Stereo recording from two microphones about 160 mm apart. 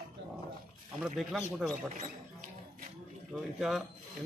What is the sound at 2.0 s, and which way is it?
Rodents, 55° right (ahead or behind).